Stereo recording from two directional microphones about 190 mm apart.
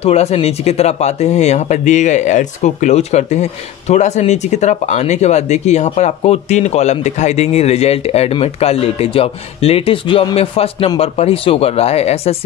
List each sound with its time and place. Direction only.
0.0 s speech: 35° left (ahead or behind)